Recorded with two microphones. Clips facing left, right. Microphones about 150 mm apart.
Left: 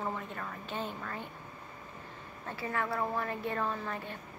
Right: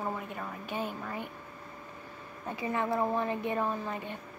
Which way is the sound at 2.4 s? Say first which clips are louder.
Right 3 dB; 15° right (ahead or behind).